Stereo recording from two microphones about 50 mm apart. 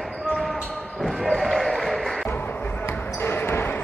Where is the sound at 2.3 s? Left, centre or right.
Left.